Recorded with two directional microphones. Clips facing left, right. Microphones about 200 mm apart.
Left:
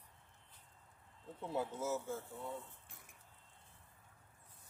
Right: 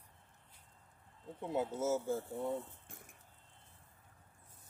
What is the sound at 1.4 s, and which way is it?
Speech, 20° right (ahead or behind).